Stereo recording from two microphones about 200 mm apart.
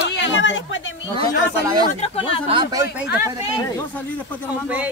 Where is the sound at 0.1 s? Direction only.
65° left (ahead or behind).